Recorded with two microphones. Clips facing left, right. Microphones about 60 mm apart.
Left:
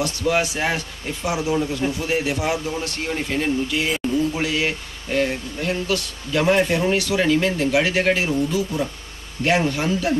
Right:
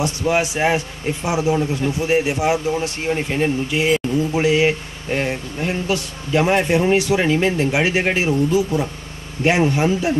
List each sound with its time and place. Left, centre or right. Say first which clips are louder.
0.0 s speech: right 2 dB; right
3.9 s speech: right 2 dB; centre
4.3 s speech: right 6 dB; right
8.3 s speech: right 4 dB; centre
9.4 s speech: right 3 dB; right